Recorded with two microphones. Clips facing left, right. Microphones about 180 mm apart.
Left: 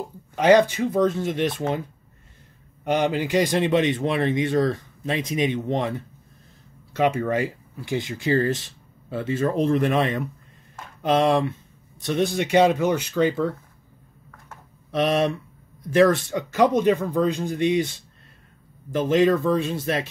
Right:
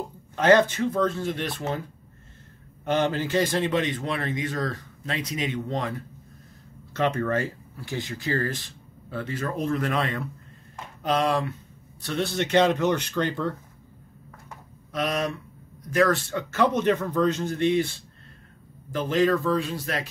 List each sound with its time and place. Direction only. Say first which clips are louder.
0.4 s speech: left 2 dB; 10° left (ahead or behind)
2.8 s a man's voice: left 2 dB; 15° left (ahead or behind)
6.9 s a man's voice: left 3 dB; 10° left (ahead or behind)
14.9 s a man's voice: left 6 dB; 25° left (ahead or behind)